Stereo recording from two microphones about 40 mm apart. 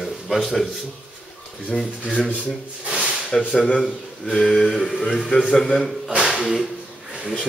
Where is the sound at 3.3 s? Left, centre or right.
Centre.